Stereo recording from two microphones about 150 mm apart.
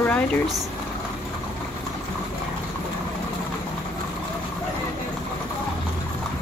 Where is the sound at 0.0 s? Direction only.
10° left (ahead or behind).